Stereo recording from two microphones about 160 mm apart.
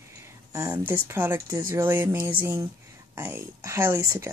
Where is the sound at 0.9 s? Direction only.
15° right (ahead or behind).